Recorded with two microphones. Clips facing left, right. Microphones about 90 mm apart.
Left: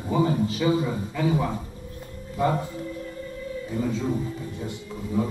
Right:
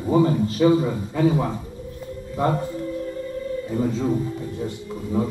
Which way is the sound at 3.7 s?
40° right (ahead or behind).